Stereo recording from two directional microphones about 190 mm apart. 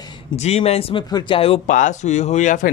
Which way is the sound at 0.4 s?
35° left (ahead or behind).